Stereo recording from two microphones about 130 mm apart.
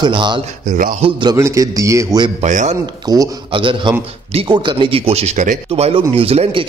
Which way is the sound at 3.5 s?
40° right (ahead or behind).